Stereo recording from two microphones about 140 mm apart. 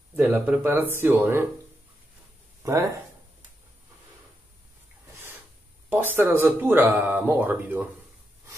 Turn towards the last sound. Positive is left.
turn(degrees=-10)  # may be behind; listen again after turning